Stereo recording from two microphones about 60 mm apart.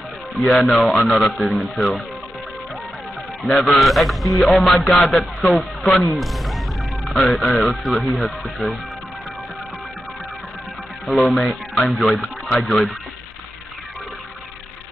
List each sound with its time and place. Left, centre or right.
0.5 s a man's voice: centre
3.4 s a man's voice: centre
3.7 s a man's voice: centre
11.1 s a man's voice: centre